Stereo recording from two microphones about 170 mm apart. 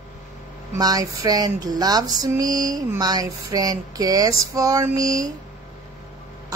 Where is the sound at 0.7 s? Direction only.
20° right (ahead or behind).